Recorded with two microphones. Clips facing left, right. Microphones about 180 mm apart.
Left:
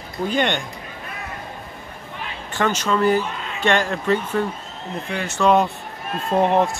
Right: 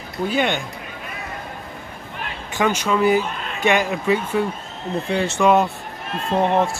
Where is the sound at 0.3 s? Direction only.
5° right (ahead or behind).